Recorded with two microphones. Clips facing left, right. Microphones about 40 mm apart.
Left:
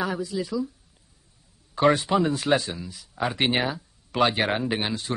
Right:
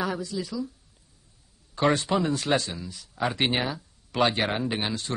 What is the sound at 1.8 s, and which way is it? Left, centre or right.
Speech, centre.